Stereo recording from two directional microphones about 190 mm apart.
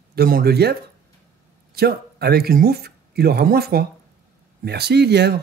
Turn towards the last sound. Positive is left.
turn(degrees=-60)  # may be behind; listen again after turning